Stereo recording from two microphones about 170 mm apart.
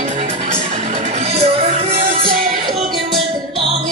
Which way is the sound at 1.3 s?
35° right (ahead or behind).